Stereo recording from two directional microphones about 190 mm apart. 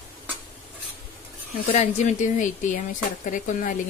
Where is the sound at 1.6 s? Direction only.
35° left (ahead or behind).